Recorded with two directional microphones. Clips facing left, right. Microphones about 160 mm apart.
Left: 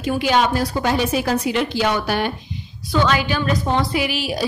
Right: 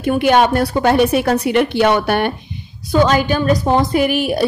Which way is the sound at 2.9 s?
45° right (ahead or behind).